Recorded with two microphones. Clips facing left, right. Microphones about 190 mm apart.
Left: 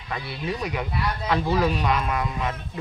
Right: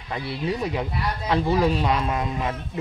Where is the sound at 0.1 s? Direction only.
25° right (ahead or behind).